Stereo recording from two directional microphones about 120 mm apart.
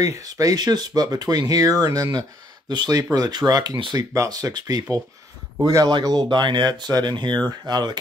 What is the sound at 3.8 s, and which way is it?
Speech, 45° right (ahead or behind).